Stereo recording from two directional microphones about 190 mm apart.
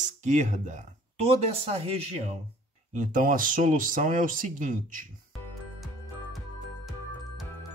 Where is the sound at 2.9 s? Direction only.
45° right (ahead or behind).